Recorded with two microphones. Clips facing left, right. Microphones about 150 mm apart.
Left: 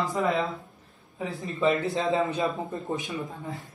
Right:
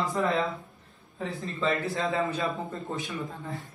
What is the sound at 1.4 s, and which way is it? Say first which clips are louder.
A man's voice: left 4 dB; 20° left (ahead or behind).